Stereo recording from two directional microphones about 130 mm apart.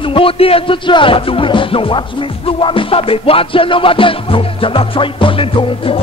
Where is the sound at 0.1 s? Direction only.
45° left (ahead or behind).